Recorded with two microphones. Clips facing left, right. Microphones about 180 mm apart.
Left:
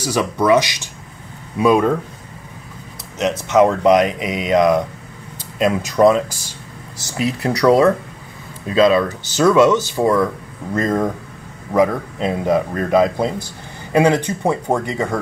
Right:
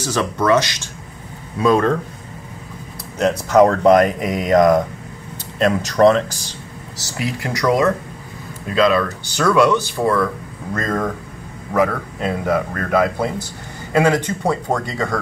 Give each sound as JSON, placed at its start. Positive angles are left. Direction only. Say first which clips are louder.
{"t": 0.0, "sound": "speech", "louder": "left 1 dB", "side_deg": 10}
{"t": 3.2, "sound": "speech", "louder": "right 1 dB", "side_deg": 0}
{"t": 7.1, "sound": "speech", "louder": "left 4 dB", "side_deg": 20}